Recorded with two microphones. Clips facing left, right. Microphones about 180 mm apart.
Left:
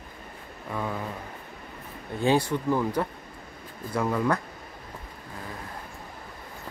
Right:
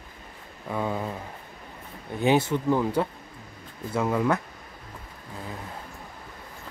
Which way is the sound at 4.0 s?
5° right (ahead or behind).